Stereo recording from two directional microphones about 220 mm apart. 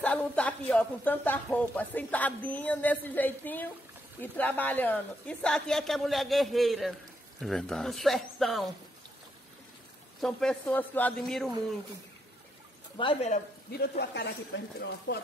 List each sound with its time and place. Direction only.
0.0 s speech: 5° left (ahead or behind)
10.2 s speech: 5° left (ahead or behind)
12.9 s speech: 25° left (ahead or behind)
13.7 s speech: 45° left (ahead or behind)